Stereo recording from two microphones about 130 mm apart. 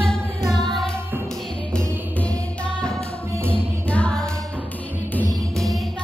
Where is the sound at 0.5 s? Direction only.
35° right (ahead or behind).